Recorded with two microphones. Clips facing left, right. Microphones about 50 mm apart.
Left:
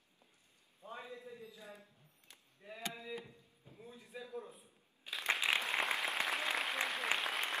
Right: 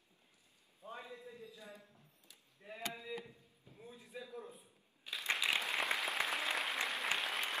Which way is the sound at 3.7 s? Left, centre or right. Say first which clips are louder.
Even; centre.